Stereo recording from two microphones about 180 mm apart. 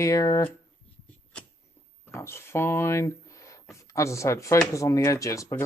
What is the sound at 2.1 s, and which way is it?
Speech, 15° left (ahead or behind).